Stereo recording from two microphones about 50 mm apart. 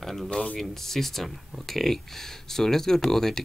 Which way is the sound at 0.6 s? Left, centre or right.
Centre.